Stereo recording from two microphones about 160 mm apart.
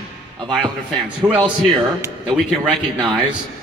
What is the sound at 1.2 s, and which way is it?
Speech, 15° right (ahead or behind).